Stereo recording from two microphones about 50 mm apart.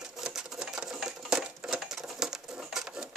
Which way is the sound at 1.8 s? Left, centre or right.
Centre.